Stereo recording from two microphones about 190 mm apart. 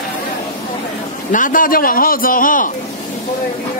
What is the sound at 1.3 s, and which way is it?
A man's voice, 45° left (ahead or behind).